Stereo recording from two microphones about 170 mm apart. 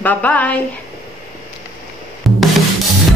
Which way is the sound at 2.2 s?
Centre (ahead or behind).